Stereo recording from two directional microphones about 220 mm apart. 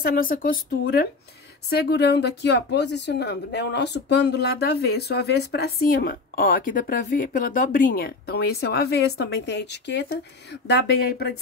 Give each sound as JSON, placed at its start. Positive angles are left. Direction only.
{"t": 0.0, "sound": "a woman's voice", "side_deg": 40}